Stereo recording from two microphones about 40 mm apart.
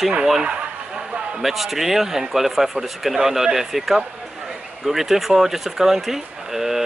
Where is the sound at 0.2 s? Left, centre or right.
Centre.